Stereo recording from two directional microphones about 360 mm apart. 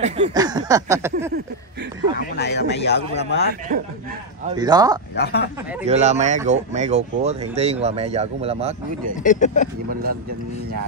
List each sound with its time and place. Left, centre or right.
0.0 s speech: centre
2.1 s speech: left
4.5 s speech: centre
5.1 s speech: left
5.9 s speech: centre
9.2 s speech: centre